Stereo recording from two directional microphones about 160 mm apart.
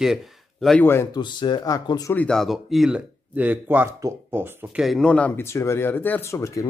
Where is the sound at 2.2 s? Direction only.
5° left (ahead or behind).